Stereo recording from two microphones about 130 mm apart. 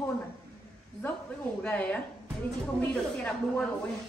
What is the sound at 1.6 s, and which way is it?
Speech, 10° left (ahead or behind).